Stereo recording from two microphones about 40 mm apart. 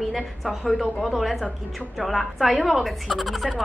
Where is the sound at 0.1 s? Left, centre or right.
Centre.